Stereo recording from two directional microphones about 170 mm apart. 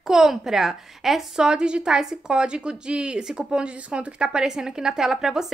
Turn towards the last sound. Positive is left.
turn(degrees=-5)  # may be behind; listen again after turning